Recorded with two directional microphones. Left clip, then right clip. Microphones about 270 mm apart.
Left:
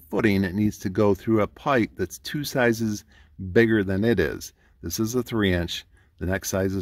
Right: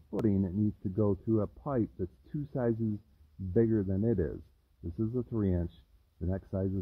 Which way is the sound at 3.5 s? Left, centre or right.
Centre.